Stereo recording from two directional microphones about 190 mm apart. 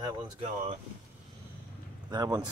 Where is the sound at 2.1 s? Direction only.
20° right (ahead or behind).